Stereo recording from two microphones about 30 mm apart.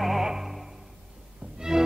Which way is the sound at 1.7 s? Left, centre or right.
Centre.